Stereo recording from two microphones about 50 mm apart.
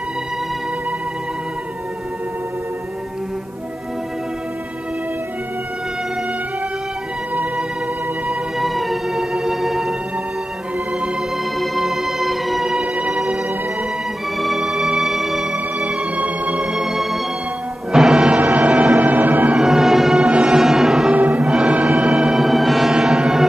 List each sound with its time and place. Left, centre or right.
8.5 s music: centre
11.6 s music: centre
12.8 s music: right
14.4 s music: centre
15.5 s music: right
16.7 s music: centre
18.4 s music: right
19.6 s music: centre
20.2 s music: centre
21.1 s music: right
21.5 s music: centre
21.7 s music: right
22.1 s music: centre